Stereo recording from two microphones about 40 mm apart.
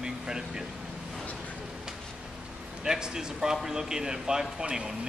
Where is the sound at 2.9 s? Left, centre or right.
Centre.